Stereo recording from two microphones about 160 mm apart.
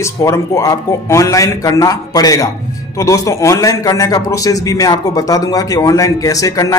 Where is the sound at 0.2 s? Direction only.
20° left (ahead or behind).